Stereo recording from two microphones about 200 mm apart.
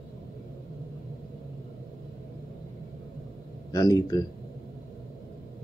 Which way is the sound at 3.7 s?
20° left (ahead or behind).